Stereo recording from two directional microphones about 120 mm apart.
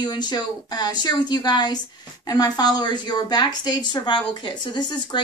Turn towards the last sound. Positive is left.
turn(degrees=35)  # may be behind; listen again after turning